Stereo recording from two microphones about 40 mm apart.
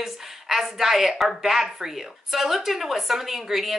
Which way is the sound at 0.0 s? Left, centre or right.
Centre.